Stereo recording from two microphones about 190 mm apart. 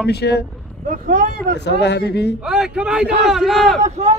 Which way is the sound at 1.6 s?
60° left (ahead or behind).